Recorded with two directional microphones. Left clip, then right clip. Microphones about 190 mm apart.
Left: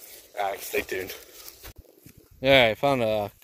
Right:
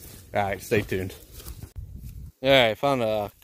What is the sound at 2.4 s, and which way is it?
Speech, centre (ahead or behind).